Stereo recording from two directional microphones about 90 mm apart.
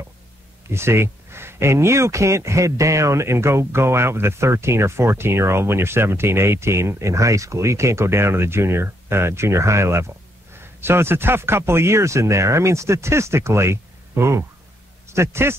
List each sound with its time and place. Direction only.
0.7 s speech: 30° right (ahead or behind)